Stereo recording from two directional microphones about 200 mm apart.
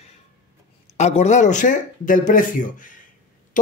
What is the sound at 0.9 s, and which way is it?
Speech, 35° left (ahead or behind).